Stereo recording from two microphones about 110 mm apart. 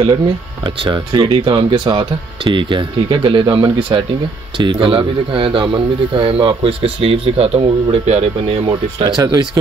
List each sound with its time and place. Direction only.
0.7 s speech: 45° right (ahead or behind); by 8.5 s 70° right (ahead or behind)
8.6 s speech: 40° right (ahead or behind)